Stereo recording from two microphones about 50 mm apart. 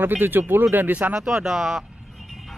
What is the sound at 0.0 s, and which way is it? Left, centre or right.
Speech, right.